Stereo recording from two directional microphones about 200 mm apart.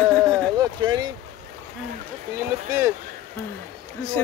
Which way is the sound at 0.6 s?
20° right (ahead or behind).